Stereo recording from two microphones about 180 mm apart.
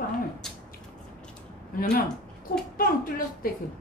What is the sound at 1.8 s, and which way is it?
A woman's voice, 55° left (ahead or behind).